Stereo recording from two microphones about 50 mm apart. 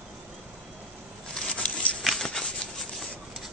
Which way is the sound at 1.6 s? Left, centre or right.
Left.